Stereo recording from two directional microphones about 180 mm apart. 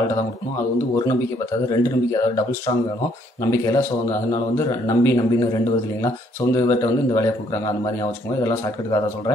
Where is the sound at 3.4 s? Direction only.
15° left (ahead or behind).